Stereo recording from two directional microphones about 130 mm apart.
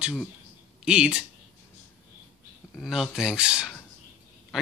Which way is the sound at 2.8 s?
Centre (ahead or behind).